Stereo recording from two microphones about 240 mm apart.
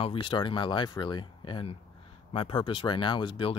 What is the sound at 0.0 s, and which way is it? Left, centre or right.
Speech, left.